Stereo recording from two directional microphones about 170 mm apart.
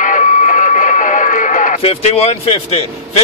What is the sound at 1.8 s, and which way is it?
Speech, 35° left (ahead or behind).